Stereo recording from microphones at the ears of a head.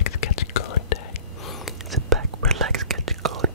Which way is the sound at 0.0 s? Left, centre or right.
Left.